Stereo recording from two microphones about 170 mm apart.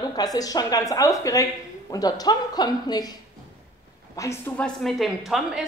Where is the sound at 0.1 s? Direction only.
20° left (ahead or behind).